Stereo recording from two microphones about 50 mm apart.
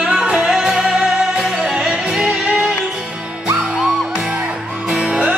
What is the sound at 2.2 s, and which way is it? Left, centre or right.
Music, right.